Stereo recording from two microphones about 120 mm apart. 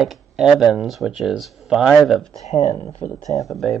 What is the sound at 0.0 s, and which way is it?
Speech, 5° right (ahead or behind).